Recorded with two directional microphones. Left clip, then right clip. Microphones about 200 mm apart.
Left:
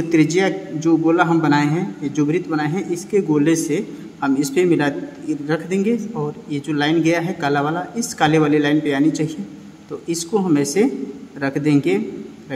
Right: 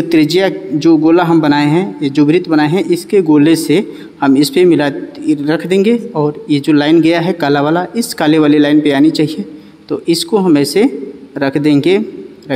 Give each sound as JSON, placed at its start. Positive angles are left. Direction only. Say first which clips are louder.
{"t": 0.1, "sound": "a man's voice", "louder": "right 5 dB", "side_deg": -40}